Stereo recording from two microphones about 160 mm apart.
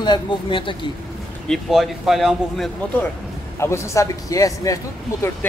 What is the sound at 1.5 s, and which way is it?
Speech, centre (ahead or behind).